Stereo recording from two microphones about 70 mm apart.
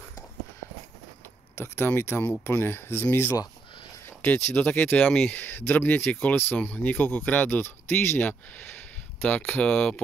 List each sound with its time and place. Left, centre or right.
1.5 s speech: left
4.2 s speech: left
9.6 s speech: centre